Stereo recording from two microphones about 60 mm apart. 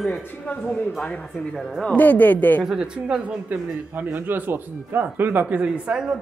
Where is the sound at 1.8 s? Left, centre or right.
Left.